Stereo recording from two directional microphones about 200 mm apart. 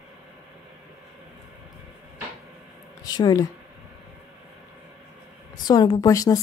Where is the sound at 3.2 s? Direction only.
20° left (ahead or behind).